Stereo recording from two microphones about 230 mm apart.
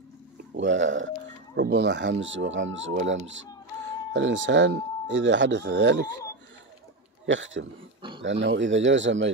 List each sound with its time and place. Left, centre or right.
0.6 s speech: right
7.2 s speech: right